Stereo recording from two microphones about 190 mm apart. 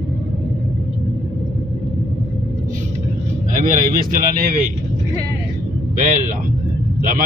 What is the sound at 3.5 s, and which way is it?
Speech, 45° right (ahead or behind).